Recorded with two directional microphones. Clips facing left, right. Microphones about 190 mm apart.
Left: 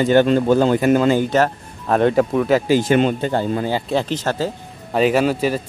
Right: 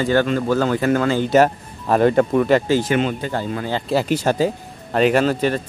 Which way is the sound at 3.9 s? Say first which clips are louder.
Right 2 dB; 10° right (ahead or behind).